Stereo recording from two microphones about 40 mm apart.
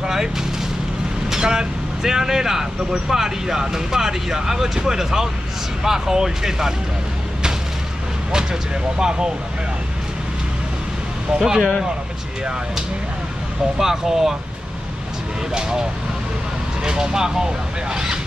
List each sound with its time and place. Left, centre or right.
0.0 s a sound: centre
1.3 s speech: centre
8.3 s speech: centre
11.3 s speech: centre
13.7 s speech: centre
16.8 s speech: centre